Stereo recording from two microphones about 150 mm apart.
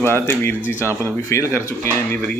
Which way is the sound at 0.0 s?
15° left (ahead or behind).